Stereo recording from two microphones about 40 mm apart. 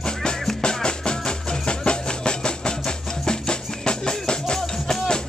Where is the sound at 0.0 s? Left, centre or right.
Centre.